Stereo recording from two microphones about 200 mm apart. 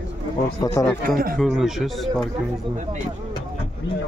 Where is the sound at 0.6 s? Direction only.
15° left (ahead or behind).